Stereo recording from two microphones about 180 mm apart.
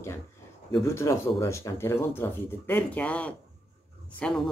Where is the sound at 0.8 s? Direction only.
15° left (ahead or behind).